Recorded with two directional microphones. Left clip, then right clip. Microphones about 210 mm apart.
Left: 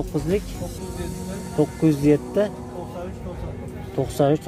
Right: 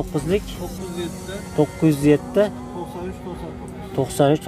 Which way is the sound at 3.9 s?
15° right (ahead or behind).